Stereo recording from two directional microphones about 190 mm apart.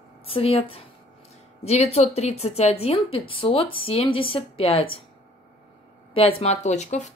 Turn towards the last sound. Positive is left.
turn(degrees=35)  # may be behind; listen again after turning